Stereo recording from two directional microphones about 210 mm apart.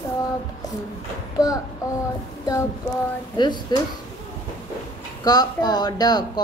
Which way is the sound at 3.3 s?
20° left (ahead or behind).